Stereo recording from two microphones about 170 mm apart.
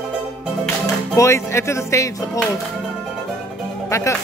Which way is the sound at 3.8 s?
15° left (ahead or behind).